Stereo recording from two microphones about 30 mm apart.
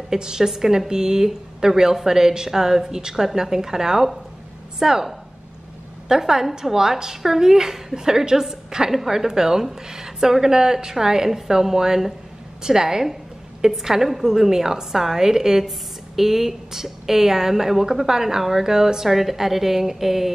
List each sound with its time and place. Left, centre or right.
0.1 s a woman's voice: centre